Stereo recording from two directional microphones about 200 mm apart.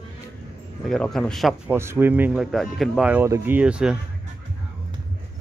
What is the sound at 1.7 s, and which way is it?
Speech, 10° right (ahead or behind).